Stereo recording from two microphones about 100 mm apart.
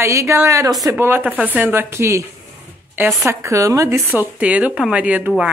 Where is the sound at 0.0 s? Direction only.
30° right (ahead or behind).